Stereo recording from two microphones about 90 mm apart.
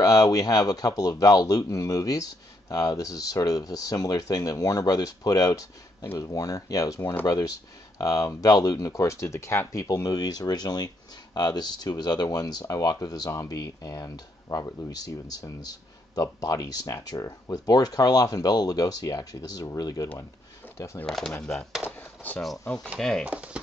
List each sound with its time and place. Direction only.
0.0 s speech: 40° left (ahead or behind)
21.0 s speech: 5° left (ahead or behind)
22.9 s speech: 5° left (ahead or behind)
23.2 s speech: 15° right (ahead or behind)